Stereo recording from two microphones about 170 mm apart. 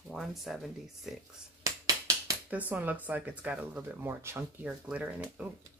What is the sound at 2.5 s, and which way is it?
Speech, 10° right (ahead or behind).